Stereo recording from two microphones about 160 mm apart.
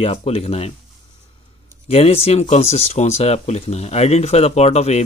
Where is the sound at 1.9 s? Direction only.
40° left (ahead or behind).